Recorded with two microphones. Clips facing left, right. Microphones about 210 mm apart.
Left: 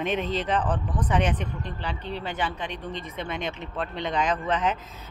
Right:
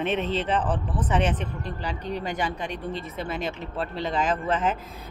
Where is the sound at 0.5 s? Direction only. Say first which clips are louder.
Even; 5° right (ahead or behind).